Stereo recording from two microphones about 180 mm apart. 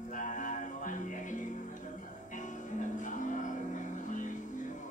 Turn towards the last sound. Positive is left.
turn(degrees=45)  # may be behind; listen again after turning